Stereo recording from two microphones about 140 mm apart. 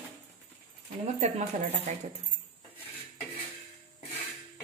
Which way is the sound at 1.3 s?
50° right (ahead or behind).